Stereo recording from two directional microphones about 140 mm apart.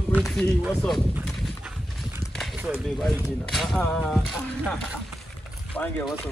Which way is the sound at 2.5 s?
10° right (ahead or behind).